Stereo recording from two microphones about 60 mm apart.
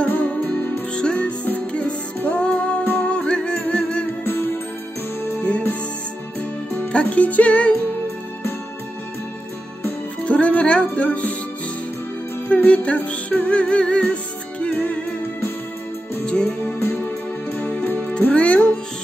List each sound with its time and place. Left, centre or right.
0.1 s music: left
2.8 s music: left
3.1 s music: centre
6.9 s music: left
10.2 s music: left
12.4 s music: left
16.4 s music: left